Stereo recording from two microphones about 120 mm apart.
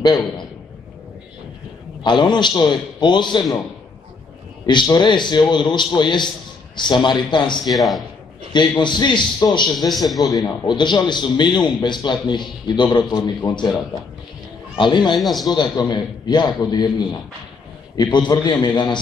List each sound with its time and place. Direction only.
2.0 s a man's voice: 40° left (ahead or behind)
4.6 s a man's voice: 40° left (ahead or behind)
7.7 s a man's voice: centre (ahead or behind)
8.5 s a man's voice: 40° left (ahead or behind)
9.8 s a man's voice: centre (ahead or behind)
10.2 s a man's voice: 30° left (ahead or behind)
14.8 s a man's voice: 40° left (ahead or behind)
15.1 s a man's voice: centre (ahead or behind)
15.4 s a man's voice: 35° left (ahead or behind)